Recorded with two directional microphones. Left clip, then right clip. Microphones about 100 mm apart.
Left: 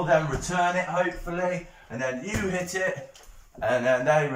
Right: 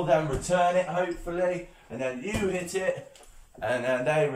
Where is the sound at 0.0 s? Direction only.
15° right (ahead or behind).